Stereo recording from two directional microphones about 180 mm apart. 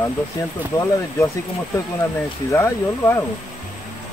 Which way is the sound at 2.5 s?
15° left (ahead or behind).